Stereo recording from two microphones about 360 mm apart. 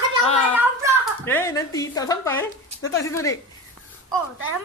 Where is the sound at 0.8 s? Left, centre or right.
Centre.